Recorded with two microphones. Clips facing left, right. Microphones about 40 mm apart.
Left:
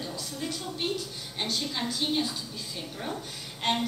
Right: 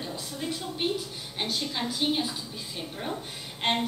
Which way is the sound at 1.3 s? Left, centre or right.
Centre.